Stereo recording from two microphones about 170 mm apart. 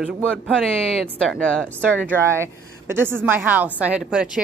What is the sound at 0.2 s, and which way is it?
Speech, 5° left (ahead or behind).